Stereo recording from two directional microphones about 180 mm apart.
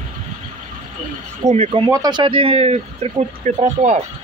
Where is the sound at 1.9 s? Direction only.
25° right (ahead or behind); by 4.0 s 40° right (ahead or behind).